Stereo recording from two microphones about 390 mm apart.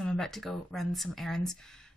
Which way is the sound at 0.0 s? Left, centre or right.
Centre.